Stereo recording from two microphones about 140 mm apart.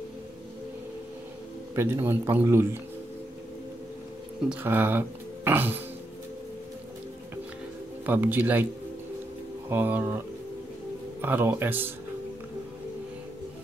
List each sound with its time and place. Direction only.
1.8 s speech: 15° right (ahead or behind)
4.6 s speech: 15° right (ahead or behind)
8.0 s speech: 15° right (ahead or behind)
9.7 s speech: 15° right (ahead or behind)